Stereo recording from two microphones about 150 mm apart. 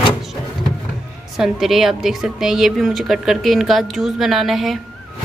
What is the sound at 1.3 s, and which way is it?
A woman's voice, centre (ahead or behind).